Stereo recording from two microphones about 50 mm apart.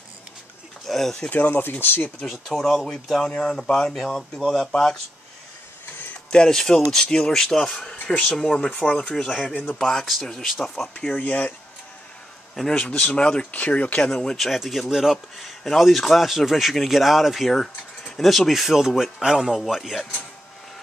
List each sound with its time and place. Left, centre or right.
0.8 s pigeon: centre
1.3 s speech: left
2.2 s speech: centre
4.4 s speech: centre
6.3 s speech: centre
8.7 s speech: left
9.1 s speech: centre
10.0 s speech: centre
11.1 s speech: left
12.7 s speech: left
14.3 s speech: centre
17.6 s a sound: centre
18.2 s a man's voice: centre